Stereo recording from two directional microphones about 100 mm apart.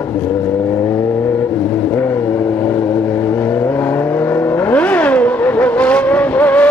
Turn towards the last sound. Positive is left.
turn(degrees=15)  # may be behind; listen again after turning